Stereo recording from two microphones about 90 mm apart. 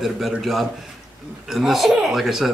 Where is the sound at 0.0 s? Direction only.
Centre (ahead or behind).